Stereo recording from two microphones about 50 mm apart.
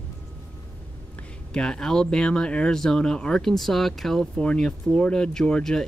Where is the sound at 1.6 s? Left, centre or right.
Centre.